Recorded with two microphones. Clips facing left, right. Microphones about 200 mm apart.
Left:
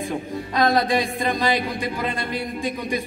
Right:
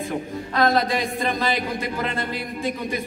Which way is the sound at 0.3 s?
15° left (ahead or behind).